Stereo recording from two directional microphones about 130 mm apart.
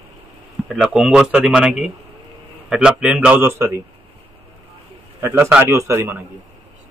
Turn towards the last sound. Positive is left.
turn(degrees=-20)  # may be behind; listen again after turning